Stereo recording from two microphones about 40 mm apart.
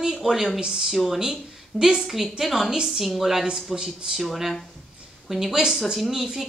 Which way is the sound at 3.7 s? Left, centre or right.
Centre.